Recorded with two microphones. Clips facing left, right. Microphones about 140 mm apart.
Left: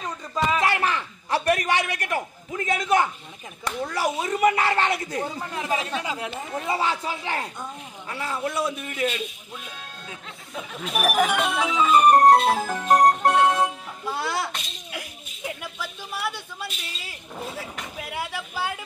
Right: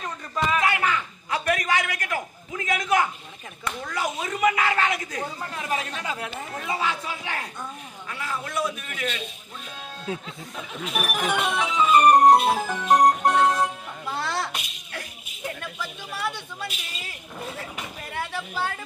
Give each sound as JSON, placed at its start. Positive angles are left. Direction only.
{"t": 0.6, "sound": "a man's voice", "side_deg": 35}
{"t": 5.6, "sound": "speech", "side_deg": 15}
{"t": 6.7, "sound": "speech", "side_deg": 30}
{"t": 10.8, "sound": "speech", "side_deg": 0}
{"t": 14.0, "sound": "music", "side_deg": 10}
{"t": 14.9, "sound": "a sound", "side_deg": 10}
{"t": 17.9, "sound": "speech", "side_deg": 5}